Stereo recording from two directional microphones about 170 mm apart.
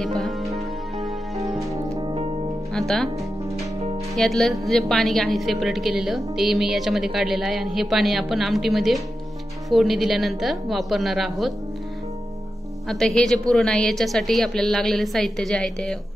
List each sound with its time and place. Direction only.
0.0 s music: centre (ahead or behind)
1.6 s music: 30° right (ahead or behind)
4.1 s a woman's voice: centre (ahead or behind)
12.8 s a woman's voice: 5° left (ahead or behind)